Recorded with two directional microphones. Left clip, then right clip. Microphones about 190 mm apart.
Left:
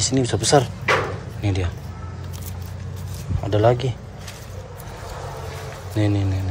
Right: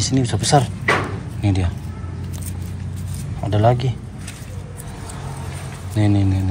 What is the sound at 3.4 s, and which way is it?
Speech, 15° left (ahead or behind).